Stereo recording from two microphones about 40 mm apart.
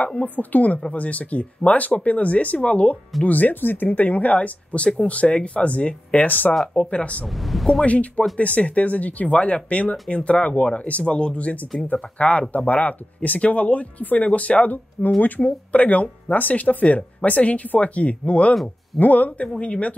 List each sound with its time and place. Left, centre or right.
0.4 s speech: left
3.3 s speech: left
6.7 s speech: left
7.2 s speech: centre
7.8 s speech: left
11.3 s speech: left
19.6 s speech: left